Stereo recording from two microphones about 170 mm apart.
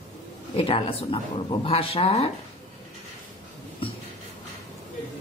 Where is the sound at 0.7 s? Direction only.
35° left (ahead or behind).